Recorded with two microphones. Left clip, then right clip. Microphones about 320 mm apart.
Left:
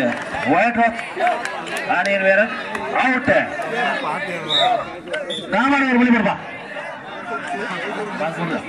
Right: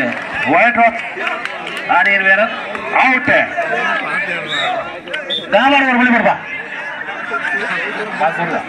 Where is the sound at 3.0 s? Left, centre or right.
Centre.